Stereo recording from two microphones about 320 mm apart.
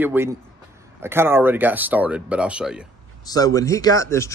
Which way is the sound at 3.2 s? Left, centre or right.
Centre.